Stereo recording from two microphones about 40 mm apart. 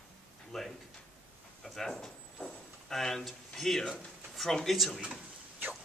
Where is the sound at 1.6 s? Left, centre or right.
Centre.